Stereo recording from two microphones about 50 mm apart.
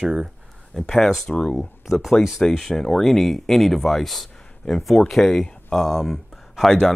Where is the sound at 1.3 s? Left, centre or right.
Centre.